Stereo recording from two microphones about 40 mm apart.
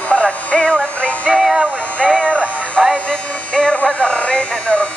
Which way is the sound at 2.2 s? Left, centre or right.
Left.